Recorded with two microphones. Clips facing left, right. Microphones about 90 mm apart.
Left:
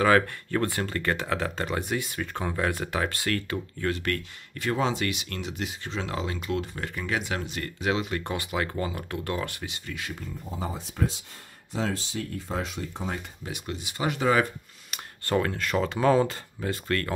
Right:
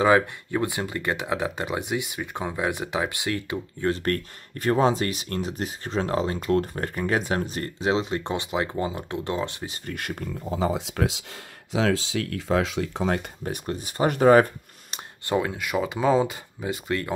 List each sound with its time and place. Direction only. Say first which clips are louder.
0.0 s speech: right 2 dB; 15° right (ahead or behind)
3.8 s speech: right 5 dB; 35° right (ahead or behind)
9.7 s speech: right 4 dB; 50° right (ahead or behind)
10.5 s speech: right 9 dB; 80° right
13.5 s speech: right 5 dB; 40° right (ahead or behind)
15.2 s speech: right 1 dB; 15° right (ahead or behind)